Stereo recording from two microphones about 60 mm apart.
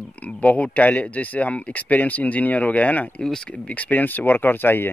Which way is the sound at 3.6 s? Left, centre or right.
Left.